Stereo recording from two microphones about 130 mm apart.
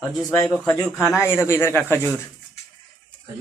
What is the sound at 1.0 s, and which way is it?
Speech, 20° left (ahead or behind).